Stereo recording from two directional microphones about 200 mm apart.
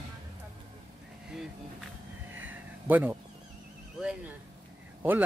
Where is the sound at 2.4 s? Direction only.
10° right (ahead or behind).